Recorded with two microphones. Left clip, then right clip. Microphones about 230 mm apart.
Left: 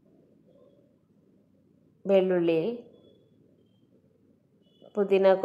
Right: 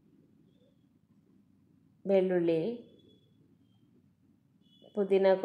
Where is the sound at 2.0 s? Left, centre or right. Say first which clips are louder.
Left 4 dB; centre.